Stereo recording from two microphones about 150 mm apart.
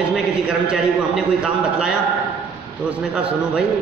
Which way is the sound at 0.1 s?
5° right (ahead or behind).